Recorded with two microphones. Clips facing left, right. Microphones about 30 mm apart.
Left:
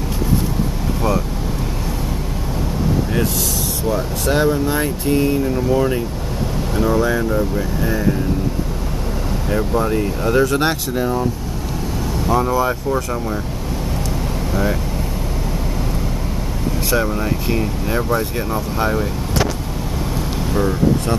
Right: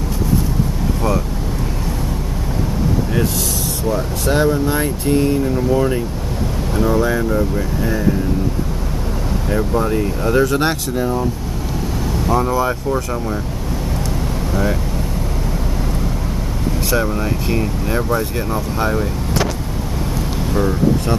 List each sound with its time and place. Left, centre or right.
3.9 s speech: centre
9.5 s speech: centre
12.3 s speech: centre
14.5 s speech: centre
16.9 s speech: centre
20.5 s speech: centre